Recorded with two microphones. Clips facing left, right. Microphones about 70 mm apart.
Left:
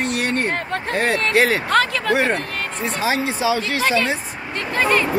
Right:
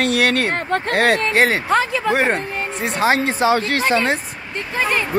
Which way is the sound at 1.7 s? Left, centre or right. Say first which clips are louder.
Even; centre.